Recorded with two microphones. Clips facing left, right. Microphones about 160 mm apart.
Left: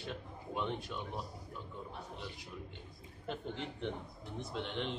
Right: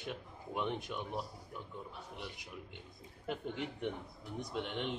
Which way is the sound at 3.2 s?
10° right (ahead or behind).